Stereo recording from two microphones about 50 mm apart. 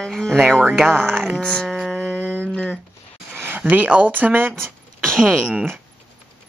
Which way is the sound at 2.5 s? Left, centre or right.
Left.